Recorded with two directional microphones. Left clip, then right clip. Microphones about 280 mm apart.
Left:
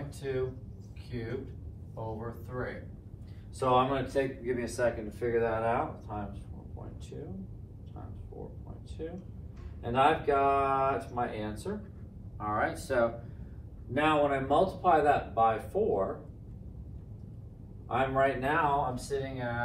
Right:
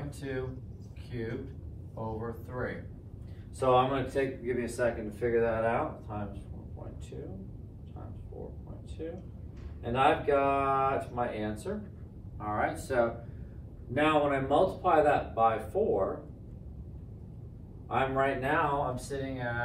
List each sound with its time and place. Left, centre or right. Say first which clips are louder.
0.2 s speech: left 4 dB; centre
9.0 s speech: even; centre
17.8 s speech: left 1 dB; centre